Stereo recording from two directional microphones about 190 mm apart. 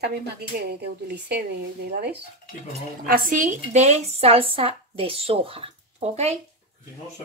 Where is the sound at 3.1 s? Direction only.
45° right (ahead or behind).